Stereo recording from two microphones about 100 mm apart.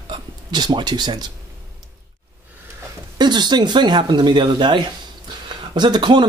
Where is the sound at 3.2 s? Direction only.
45° right (ahead or behind).